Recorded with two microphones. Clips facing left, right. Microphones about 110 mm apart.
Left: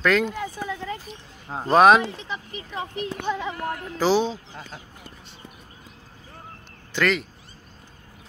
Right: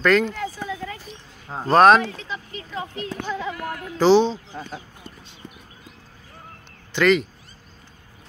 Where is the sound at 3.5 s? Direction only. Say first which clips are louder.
Left 1 dB; 35° left (ahead or behind).